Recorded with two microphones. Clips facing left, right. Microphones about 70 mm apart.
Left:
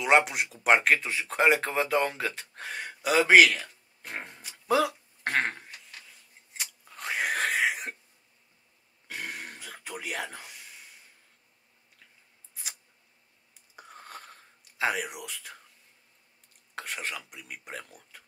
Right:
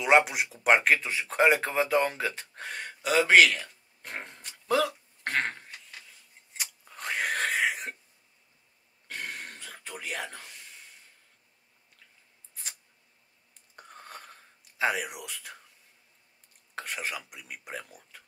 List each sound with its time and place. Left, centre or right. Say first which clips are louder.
0.0 s speech: right 1 dB; centre
5.2 s a sound: left 2 dB; centre
6.5 s chewing: even; centre
9.0 s throat clearing: even; centre
13.7 s whispering: even; centre
16.7 s speech: right 1 dB; centre